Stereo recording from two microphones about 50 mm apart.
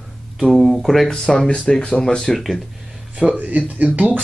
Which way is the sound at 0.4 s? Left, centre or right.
Centre.